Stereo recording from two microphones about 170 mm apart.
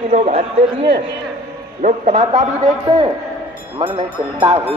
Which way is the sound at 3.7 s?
30° right (ahead or behind).